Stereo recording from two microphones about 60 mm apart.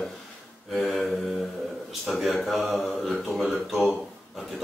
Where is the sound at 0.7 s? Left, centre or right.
Centre.